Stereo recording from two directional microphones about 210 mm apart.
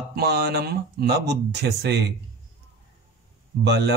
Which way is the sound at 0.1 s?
50° right (ahead or behind).